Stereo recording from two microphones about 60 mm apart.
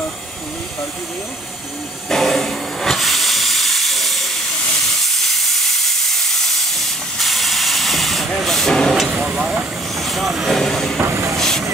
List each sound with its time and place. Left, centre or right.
2.0 s steam: centre
9.1 s vehicle: centre
9.9 s speech: centre
10.6 s vehicle: centre
11.0 s train: right
11.3 s vehicle: centre